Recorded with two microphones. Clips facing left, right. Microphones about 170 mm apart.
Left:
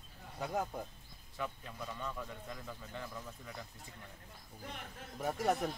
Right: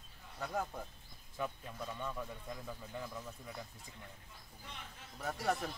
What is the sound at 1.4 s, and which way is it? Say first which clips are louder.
Speech: right 1 dB; 15° right (ahead or behind).